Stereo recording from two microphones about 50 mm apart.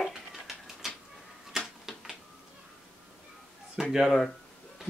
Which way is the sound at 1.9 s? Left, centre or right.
Centre.